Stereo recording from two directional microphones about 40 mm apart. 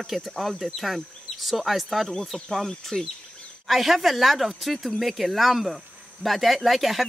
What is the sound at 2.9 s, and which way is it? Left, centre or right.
Speech, left.